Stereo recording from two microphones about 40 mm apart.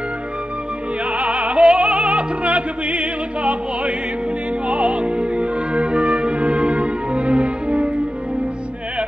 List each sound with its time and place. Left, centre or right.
1.1 s music: right